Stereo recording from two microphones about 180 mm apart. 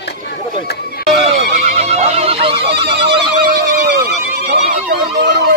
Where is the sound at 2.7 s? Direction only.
70° right (ahead or behind).